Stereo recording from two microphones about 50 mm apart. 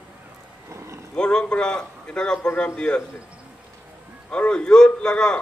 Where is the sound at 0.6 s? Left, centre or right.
Right.